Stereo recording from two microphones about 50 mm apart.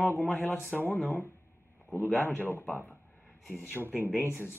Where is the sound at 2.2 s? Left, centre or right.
Left.